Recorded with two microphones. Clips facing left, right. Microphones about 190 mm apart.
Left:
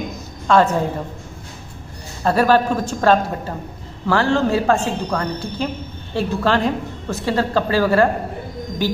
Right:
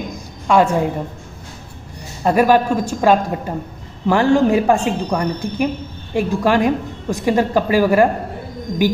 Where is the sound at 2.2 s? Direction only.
15° right (ahead or behind).